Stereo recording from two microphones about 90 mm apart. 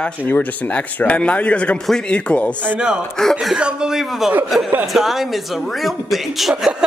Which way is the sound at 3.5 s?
10° right (ahead or behind).